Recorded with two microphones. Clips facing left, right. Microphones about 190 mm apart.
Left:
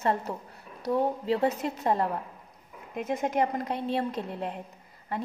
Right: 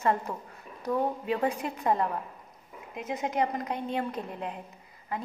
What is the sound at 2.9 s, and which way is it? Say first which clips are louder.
Speech: left 2 dB; 50° left (ahead or behind).